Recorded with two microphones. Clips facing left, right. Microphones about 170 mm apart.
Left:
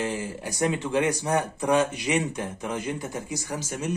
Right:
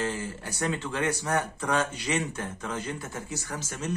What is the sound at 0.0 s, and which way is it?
Speech, 15° left (ahead or behind).